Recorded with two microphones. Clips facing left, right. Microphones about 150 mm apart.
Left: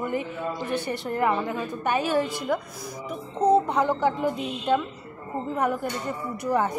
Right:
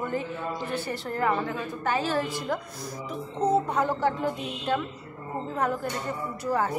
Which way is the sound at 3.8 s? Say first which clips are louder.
Left 2 dB; 15° left (ahead or behind).